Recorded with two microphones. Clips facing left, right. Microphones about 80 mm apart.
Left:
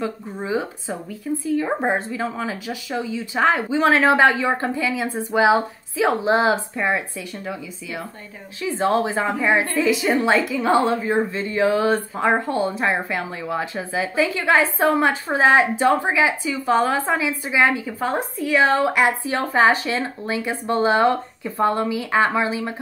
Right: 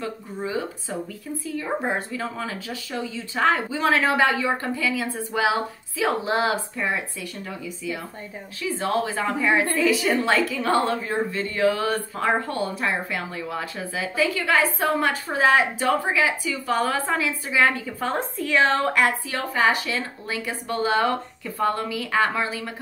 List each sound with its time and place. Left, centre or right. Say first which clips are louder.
0.5 s speech: left 5 dB; left
8.6 s speech: left 4 dB; left